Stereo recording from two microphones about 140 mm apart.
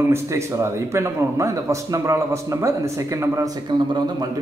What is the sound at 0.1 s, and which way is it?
A man's voice, 20° right (ahead or behind).